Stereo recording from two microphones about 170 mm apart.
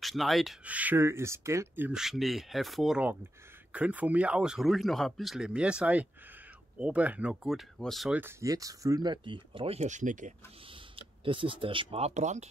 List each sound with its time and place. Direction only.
0.0 s speech: centre (ahead or behind)
8.2 s speech: 15° right (ahead or behind); by 10.3 s 45° right (ahead or behind)
10.7 s speech: 30° right (ahead or behind)